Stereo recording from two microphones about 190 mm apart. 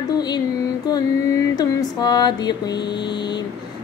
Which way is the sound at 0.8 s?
20° left (ahead or behind).